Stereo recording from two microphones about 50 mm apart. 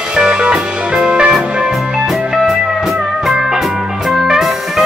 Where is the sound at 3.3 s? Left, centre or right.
Centre.